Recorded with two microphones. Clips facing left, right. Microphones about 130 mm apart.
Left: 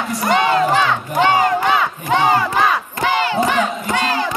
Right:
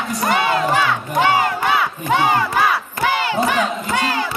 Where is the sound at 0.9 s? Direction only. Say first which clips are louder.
Left 1 dB; 20° left (ahead or behind).